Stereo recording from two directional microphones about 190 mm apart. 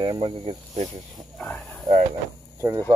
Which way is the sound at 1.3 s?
5° left (ahead or behind).